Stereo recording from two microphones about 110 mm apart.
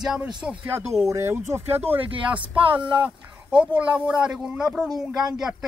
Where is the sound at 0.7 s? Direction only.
20° right (ahead or behind).